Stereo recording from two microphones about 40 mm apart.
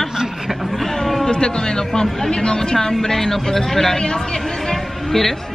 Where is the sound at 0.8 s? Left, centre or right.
Centre.